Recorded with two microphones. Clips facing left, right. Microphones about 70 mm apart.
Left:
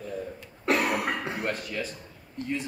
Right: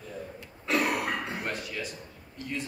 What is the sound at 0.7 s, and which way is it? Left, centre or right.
Throat clearing, left.